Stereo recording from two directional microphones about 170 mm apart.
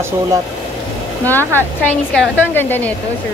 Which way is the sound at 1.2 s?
10° left (ahead or behind).